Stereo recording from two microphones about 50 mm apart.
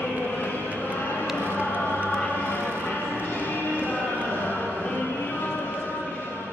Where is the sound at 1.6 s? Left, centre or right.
Left.